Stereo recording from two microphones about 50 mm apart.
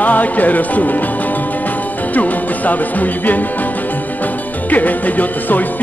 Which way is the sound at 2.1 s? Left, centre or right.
Left.